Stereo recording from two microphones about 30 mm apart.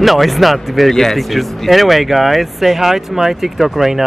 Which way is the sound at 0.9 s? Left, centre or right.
Centre.